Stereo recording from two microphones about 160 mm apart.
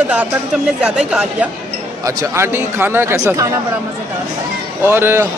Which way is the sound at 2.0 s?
20° right (ahead or behind).